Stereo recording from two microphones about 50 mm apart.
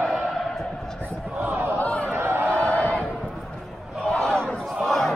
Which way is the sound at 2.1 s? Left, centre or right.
Right.